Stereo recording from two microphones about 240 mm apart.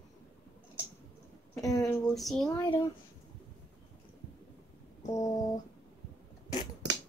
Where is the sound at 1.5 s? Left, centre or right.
Centre.